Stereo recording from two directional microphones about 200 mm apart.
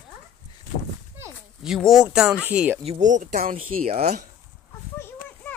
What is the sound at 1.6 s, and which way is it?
Speech, centre (ahead or behind).